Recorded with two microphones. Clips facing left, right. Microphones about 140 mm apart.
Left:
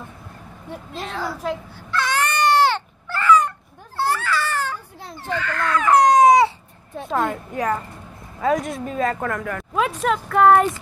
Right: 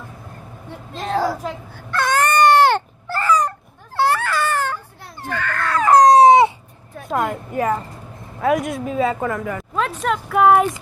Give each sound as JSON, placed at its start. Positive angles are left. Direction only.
{"t": 0.9, "sound": "a woman's voice", "side_deg": -35}
{"t": 1.9, "sound": "baby cry", "side_deg": -50}
{"t": 3.1, "sound": "a sound", "side_deg": -40}
{"t": 3.9, "sound": "baby cry", "side_deg": -65}
{"t": 5.7, "sound": "baby cry", "side_deg": -35}
{"t": 7.1, "sound": "speech", "side_deg": -5}